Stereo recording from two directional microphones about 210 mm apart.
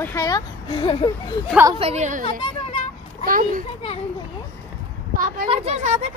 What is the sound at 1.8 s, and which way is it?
Speech, 30° right (ahead or behind).